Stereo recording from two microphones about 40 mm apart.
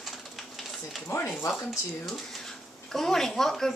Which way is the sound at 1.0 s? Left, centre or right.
Left.